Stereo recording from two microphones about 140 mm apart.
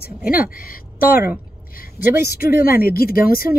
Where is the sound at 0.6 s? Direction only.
90° left.